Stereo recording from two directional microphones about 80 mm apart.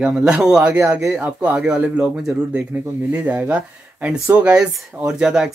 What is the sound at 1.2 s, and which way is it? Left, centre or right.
Speech, right.